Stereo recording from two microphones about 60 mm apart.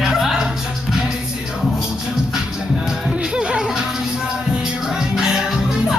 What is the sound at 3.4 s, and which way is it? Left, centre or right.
Music, centre.